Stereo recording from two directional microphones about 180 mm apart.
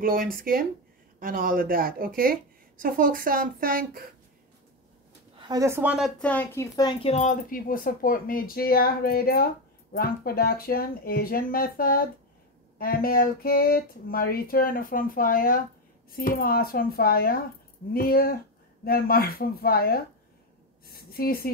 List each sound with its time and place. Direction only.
0.0 s speech: 55° right (ahead or behind)
5.3 s speech: 25° right (ahead or behind); by 9.5 s 55° left (ahead or behind)
9.9 s a sound: 55° left (ahead or behind)